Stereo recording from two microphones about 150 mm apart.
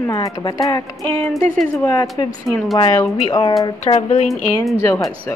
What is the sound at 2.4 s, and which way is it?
Speech, centre (ahead or behind).